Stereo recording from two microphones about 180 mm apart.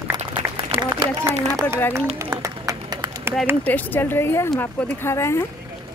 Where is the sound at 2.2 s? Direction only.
20° right (ahead or behind).